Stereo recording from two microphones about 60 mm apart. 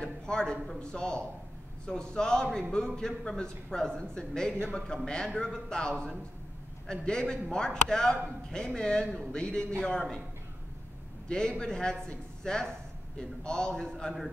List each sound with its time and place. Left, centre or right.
0.0 s a man's voice: centre
11.2 s speech: centre